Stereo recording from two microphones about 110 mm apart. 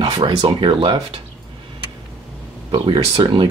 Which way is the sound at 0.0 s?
50° right (ahead or behind).